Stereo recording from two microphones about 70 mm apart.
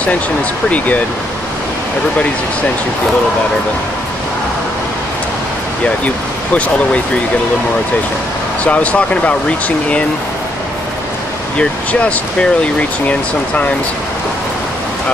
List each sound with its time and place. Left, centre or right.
0.7 s speech: left
6.0 s speech: centre
8.6 s speech: centre
11.5 s speech: centre